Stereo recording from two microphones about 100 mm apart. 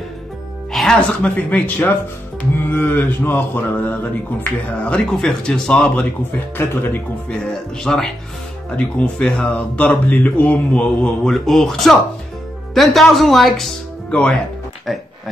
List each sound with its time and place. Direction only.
0.7 s a sound: 5° left (ahead or behind)
6.5 s speech: 20° left (ahead or behind)
7.2 s speech: 5° left (ahead or behind)
8.6 s a sound: 10° left (ahead or behind)
11.2 s speech: centre (ahead or behind)
14.9 s speech: centre (ahead or behind)